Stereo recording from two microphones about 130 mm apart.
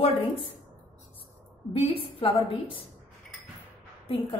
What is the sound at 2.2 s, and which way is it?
Speech, 40° left (ahead or behind).